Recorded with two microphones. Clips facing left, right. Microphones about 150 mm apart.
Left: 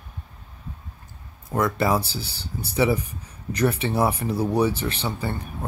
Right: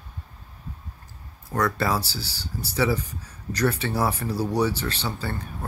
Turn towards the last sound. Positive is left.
turn(degrees=20)  # may be behind; listen again after turning